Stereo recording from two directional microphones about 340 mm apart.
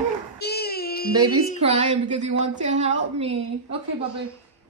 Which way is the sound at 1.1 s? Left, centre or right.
Centre.